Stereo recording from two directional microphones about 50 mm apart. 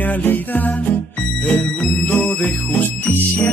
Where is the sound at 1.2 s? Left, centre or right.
Centre.